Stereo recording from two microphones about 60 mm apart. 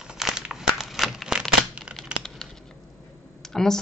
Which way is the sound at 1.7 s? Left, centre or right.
Centre.